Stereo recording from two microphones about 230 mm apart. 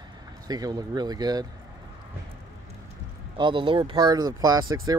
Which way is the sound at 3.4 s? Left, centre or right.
Right.